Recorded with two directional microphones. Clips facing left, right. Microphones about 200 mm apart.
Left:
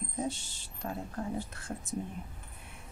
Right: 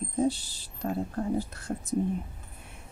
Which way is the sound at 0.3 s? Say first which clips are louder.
Right 7 dB; 35° right (ahead or behind).